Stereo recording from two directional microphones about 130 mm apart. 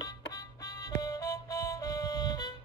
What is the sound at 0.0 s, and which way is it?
Music, 30° left (ahead or behind).